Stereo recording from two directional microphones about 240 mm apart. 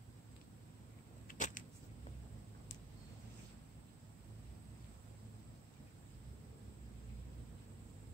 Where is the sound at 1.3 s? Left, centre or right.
Left.